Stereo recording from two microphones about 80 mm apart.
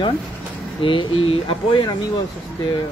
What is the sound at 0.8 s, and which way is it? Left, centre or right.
Speech, left.